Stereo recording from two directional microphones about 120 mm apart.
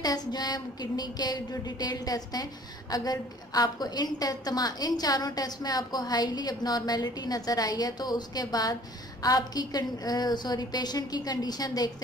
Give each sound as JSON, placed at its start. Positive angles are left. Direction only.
{"t": 0.0, "sound": "a woman's voice", "side_deg": 35}